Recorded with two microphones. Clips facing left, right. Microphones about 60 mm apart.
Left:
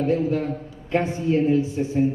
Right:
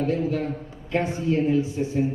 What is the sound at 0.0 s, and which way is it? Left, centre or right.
Speech, left.